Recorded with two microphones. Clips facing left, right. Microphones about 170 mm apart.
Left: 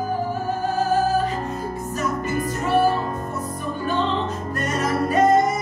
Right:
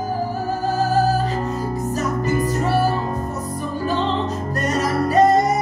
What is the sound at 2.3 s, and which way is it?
Music, 35° right (ahead or behind).